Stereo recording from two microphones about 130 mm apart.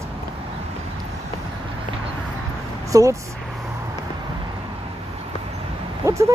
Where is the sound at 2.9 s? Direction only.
25° right (ahead or behind).